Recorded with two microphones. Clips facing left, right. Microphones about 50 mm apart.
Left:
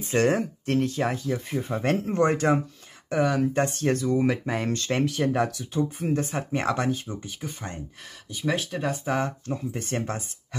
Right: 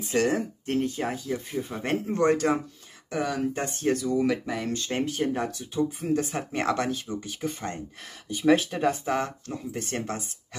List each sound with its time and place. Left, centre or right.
0.1 s speech: left
4.1 s speech: left
4.5 s speech: left
5.8 s speech: left
6.5 s speech: left
7.4 s speech: centre
8.7 s speech: centre
9.2 s speech: left